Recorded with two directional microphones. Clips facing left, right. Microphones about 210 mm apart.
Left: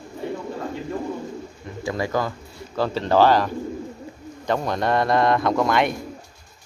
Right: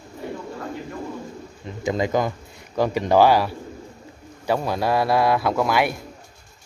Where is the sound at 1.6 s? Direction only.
20° right (ahead or behind).